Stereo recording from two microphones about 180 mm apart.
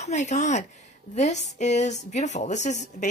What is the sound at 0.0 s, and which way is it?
A woman's voice, 40° left (ahead or behind).